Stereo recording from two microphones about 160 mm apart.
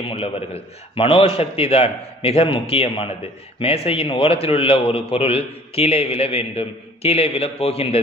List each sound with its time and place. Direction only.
0.1 s a man's voice: 35° left (ahead or behind)